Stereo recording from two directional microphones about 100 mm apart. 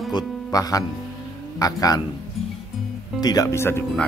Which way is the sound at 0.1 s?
40° left (ahead or behind).